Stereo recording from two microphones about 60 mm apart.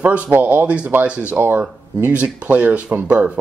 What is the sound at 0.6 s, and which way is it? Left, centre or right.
Speech, right.